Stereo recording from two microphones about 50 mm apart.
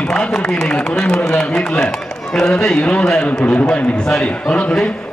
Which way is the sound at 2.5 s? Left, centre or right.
Left.